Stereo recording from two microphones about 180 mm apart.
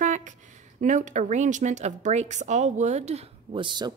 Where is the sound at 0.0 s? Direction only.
45° right (ahead or behind).